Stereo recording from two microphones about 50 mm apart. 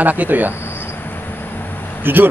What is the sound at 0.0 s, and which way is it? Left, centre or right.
Speech, right.